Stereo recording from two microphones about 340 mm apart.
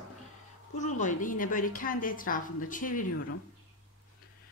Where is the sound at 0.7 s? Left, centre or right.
Left.